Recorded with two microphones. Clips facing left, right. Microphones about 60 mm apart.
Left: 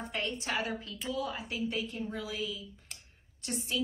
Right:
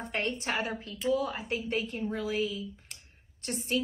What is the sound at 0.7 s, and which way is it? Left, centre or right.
Speech, right.